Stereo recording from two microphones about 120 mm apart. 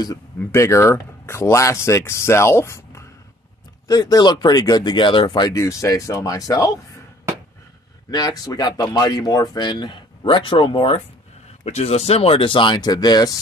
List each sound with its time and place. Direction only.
0.4 s speech: 25° left (ahead or behind); by 5.5 s 40° left (ahead or behind)
5.5 s speech: 25° left (ahead or behind)
8.1 s speech: 35° left (ahead or behind)
11.6 s speech: 60° left (ahead or behind); by 13.4 s 35° left (ahead or behind)